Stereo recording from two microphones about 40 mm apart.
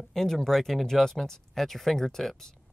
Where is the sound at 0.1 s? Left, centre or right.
Centre.